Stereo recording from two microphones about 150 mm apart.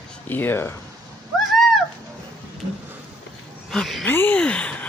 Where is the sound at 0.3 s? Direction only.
15° left (ahead or behind).